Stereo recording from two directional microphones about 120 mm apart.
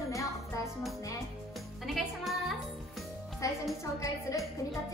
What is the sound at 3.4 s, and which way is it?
Speech, 25° left (ahead or behind).